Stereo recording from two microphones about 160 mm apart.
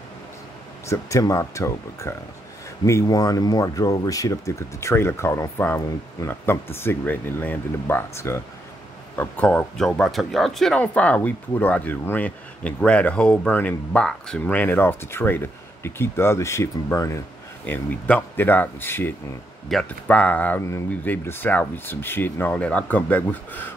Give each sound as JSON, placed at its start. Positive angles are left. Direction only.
{"t": 0.8, "sound": "speech", "side_deg": 20}
{"t": 17.6, "sound": "speech", "side_deg": 10}